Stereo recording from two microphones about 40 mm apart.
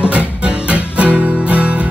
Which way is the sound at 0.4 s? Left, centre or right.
Right.